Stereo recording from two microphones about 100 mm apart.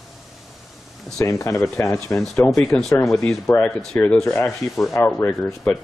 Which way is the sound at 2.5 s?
5° left (ahead or behind).